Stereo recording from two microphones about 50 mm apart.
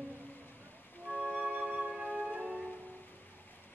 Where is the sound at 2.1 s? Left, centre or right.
Right.